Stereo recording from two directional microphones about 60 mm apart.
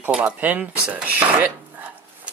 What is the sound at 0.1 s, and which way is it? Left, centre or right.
Speech, right.